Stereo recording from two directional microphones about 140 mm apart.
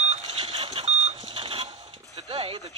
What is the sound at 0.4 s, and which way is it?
Vehicle, 40° right (ahead or behind).